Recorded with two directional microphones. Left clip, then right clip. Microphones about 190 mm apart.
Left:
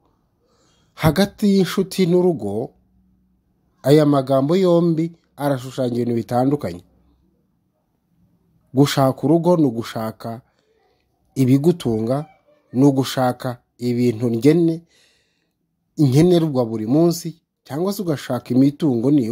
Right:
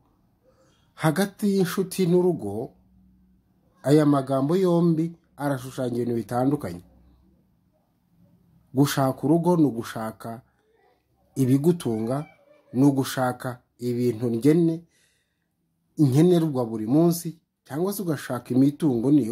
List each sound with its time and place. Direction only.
0.7 s speech: 40° left (ahead or behind)
3.8 s speech: 40° left (ahead or behind)
8.7 s speech: 35° left (ahead or behind)
14.9 s a sound: 40° left (ahead or behind)
15.9 s speech: 40° left (ahead or behind)